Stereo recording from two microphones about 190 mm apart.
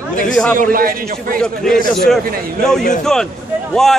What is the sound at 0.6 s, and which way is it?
Speech, 50° right (ahead or behind).